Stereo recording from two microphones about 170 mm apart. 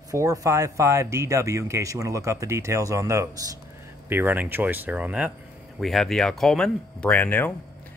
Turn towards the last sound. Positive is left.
turn(degrees=10)  # may be behind; listen again after turning